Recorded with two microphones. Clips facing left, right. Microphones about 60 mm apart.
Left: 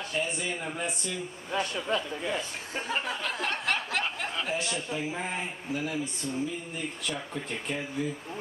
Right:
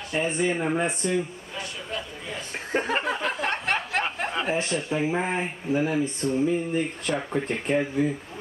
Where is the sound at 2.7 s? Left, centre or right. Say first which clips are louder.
Right 9 dB; right.